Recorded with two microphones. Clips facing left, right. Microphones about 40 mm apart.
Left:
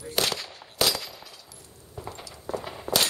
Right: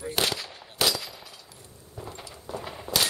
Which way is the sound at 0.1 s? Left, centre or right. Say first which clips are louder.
Left 1 dB; centre.